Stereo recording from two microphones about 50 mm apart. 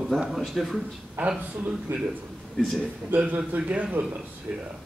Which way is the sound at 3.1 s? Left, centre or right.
Right.